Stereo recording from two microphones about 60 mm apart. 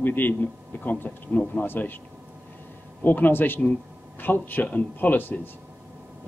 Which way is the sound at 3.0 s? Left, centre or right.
Left.